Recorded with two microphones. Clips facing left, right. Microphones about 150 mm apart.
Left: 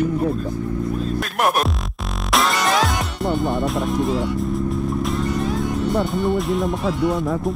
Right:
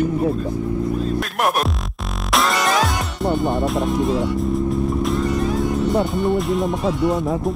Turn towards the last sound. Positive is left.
turn(degrees=0)  # may be behind; listen again after turning